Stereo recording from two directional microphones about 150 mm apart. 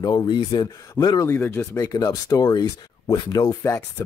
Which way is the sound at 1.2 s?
15° left (ahead or behind).